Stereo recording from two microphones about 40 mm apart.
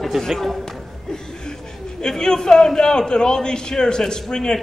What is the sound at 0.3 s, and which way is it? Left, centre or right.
Speech, centre.